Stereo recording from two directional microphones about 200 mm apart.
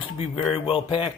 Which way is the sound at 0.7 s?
25° left (ahead or behind).